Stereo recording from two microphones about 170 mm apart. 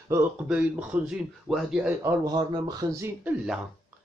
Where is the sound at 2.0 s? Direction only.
20° right (ahead or behind).